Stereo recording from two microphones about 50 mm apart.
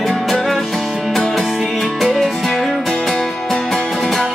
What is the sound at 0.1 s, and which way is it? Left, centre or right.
Music, centre.